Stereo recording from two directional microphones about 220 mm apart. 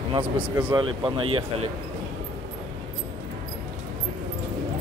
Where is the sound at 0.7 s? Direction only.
20° right (ahead or behind).